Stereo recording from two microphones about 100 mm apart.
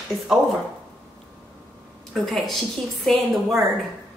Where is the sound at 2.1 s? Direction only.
Centre (ahead or behind).